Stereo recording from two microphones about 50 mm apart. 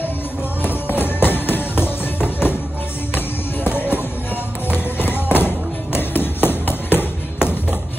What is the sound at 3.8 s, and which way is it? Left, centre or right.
Music, left.